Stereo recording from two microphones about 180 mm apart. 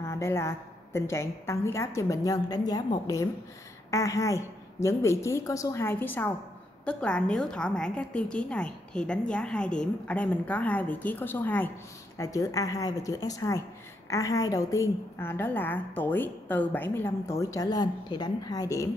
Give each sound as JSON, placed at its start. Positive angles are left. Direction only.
{"t": 0.0, "sound": "a woman's voice", "side_deg": 15}